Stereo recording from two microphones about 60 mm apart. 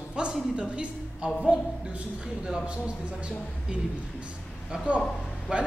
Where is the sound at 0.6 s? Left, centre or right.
Centre.